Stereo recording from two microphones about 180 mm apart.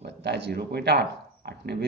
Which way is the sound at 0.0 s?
70° right (ahead or behind).